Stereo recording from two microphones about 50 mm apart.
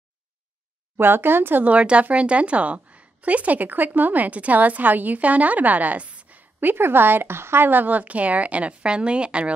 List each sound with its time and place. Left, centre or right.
0.9 s speech: right
1.7 s a woman's voice: right
6.6 s a woman's voice: right